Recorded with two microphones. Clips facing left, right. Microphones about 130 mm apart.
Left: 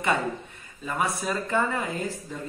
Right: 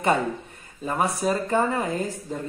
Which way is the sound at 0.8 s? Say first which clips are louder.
Right 4 dB; 40° right (ahead or behind).